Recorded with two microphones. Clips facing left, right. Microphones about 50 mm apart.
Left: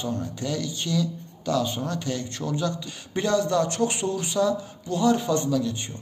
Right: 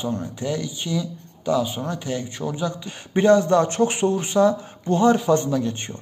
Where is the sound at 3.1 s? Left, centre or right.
Right.